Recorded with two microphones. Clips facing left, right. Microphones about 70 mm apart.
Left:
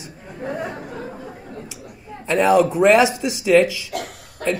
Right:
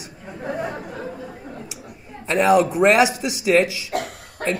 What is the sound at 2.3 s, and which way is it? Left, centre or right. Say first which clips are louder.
Speech: left 1 dB; right.